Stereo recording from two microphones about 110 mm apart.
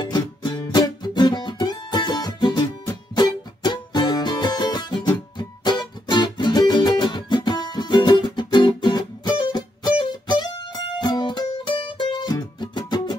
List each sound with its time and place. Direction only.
0.0 s music: 45° left (ahead or behind)